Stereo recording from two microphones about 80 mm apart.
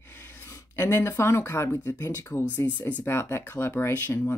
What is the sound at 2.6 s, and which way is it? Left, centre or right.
Speech, left.